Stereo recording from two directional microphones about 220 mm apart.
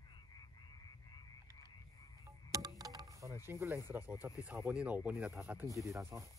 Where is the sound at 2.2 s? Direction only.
15° right (ahead or behind).